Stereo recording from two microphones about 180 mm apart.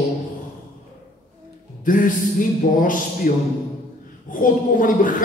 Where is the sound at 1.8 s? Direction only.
45° left (ahead or behind).